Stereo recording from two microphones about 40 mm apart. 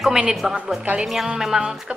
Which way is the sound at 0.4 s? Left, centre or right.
Centre.